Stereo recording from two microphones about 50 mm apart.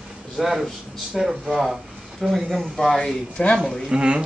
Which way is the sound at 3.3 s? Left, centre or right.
Centre.